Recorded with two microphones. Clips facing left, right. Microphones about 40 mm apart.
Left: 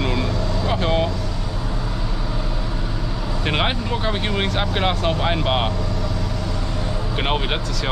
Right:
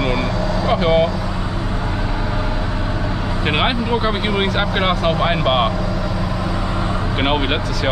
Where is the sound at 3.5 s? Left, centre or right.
Centre.